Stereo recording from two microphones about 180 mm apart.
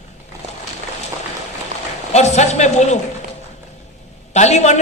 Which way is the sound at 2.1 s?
40° left (ahead or behind).